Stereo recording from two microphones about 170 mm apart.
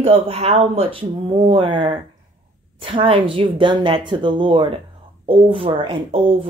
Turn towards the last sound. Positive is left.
turn(degrees=-30)  # may be behind; listen again after turning